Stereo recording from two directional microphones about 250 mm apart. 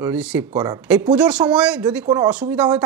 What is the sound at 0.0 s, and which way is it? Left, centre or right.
Speech, centre.